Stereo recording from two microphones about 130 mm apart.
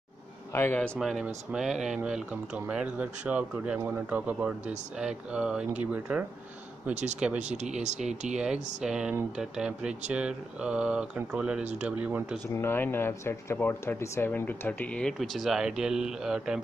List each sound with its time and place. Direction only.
0.5 s speech: 15° left (ahead or behind)
0.9 s speech: centre (ahead or behind)
7.3 s speech: 65° right (ahead or behind)
8.4 s speech: 5° right (ahead or behind)
12.4 s speech: 20° left (ahead or behind); by 16.6 s 5° right (ahead or behind)